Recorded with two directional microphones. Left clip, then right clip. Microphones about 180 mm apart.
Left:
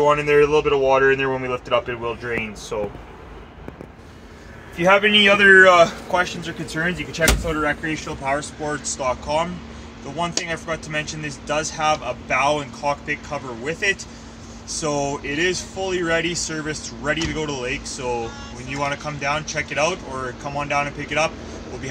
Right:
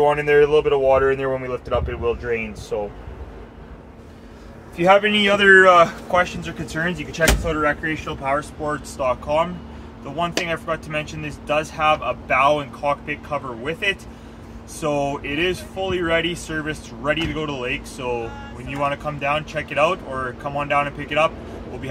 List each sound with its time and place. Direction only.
0.0 s speech: 25° left (ahead or behind)
5.0 s a man's voice: centre (ahead or behind)